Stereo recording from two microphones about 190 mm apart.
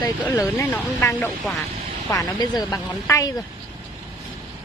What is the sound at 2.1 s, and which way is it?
A woman's voice, 20° left (ahead or behind).